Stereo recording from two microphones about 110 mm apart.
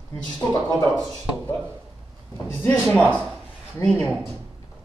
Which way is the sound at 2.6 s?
15° left (ahead or behind).